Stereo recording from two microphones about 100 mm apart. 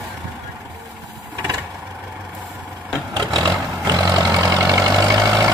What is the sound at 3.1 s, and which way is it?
Vehicle, 40° right (ahead or behind).